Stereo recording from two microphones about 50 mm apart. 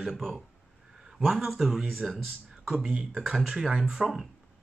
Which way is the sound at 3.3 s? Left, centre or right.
Centre.